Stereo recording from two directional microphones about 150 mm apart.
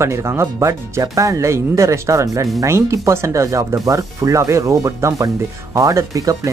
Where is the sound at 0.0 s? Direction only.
20° right (ahead or behind).